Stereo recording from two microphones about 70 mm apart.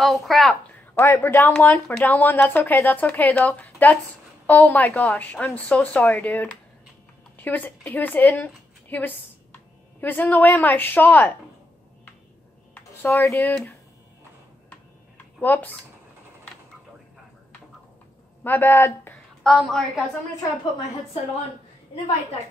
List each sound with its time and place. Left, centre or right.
0.0 s speech: centre
0.9 s a woman's voice: left
12.7 s speech: left
15.4 s a woman's voice: left
18.4 s a man's voice: left
19.4 s a woman's voice: centre